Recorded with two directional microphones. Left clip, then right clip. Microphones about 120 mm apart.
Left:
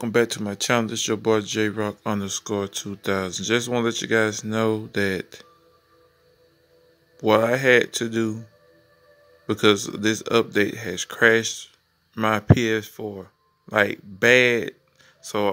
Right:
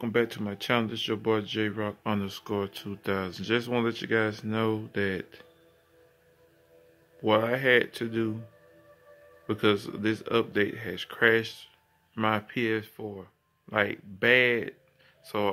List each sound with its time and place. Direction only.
0.1 s speech: 40° left (ahead or behind)
7.2 s speech: 40° left (ahead or behind)
9.5 s speech: 40° left (ahead or behind)